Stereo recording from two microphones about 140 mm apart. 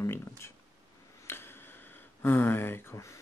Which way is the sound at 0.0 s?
20° left (ahead or behind).